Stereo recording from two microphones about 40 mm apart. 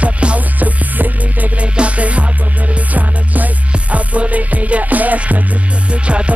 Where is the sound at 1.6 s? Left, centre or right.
Right.